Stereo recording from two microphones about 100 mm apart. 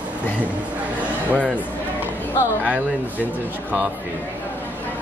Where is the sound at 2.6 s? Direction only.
15° right (ahead or behind).